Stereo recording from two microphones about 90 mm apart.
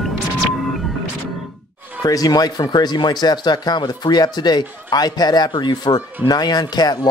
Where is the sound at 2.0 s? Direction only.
45° left (ahead or behind).